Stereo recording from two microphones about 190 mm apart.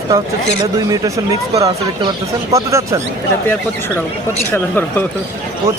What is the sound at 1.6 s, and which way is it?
Speech, 15° right (ahead or behind).